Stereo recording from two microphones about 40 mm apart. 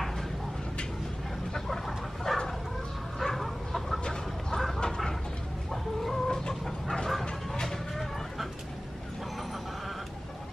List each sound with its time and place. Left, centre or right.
1.7 s bird: centre
3.2 s chicken: centre
4.0 s chicken: centre
5.7 s chicken: centre
6.6 s a sound: centre
7.6 s chicken: centre